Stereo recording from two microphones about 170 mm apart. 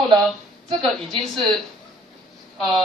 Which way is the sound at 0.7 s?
5° left (ahead or behind).